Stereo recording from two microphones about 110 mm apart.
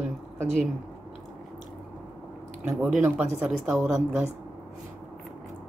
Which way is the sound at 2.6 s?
10° right (ahead or behind).